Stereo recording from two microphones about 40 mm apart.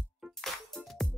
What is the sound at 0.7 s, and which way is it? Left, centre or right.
Music, centre.